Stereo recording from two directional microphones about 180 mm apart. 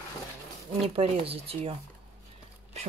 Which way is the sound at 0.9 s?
30° right (ahead or behind).